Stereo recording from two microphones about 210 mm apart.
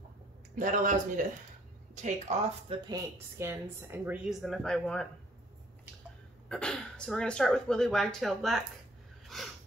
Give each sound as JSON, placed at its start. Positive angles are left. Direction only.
{"t": 0.6, "sound": "speech", "side_deg": -40}
{"t": 2.7, "sound": "a woman's voice", "side_deg": -15}
{"t": 6.5, "sound": "speech", "side_deg": 5}
{"t": 9.3, "sound": "a sound", "side_deg": 0}